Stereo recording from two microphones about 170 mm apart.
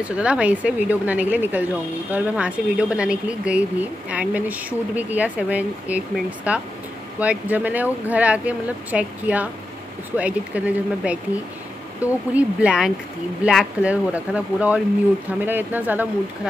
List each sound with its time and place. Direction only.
0.0 s speech: 5° right (ahead or behind)